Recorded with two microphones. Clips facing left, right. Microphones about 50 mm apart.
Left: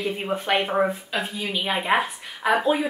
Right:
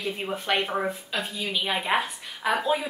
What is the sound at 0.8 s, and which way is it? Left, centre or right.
Speech, centre.